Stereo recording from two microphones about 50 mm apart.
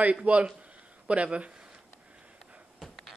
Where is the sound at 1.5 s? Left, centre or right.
Centre.